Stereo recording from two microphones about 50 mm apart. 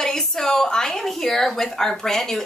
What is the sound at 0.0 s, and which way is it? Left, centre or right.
A woman's voice, centre.